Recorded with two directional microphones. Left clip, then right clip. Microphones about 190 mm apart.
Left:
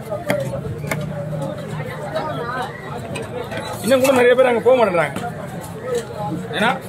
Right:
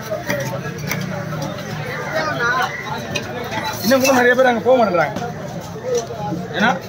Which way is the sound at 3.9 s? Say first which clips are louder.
Even; 50° left (ahead or behind).